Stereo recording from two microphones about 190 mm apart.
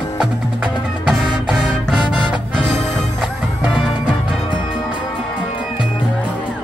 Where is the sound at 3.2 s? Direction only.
5° right (ahead or behind).